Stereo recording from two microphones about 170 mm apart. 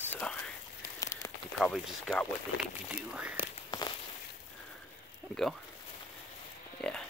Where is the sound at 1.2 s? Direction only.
20° left (ahead or behind).